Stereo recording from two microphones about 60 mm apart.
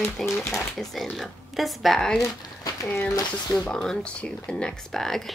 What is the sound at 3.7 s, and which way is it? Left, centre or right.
Speech, centre.